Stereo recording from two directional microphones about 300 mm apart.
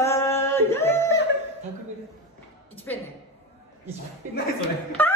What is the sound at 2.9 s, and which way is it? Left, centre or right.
Speech, centre.